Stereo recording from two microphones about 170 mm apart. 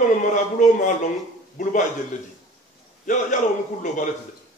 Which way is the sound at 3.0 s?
45° left (ahead or behind).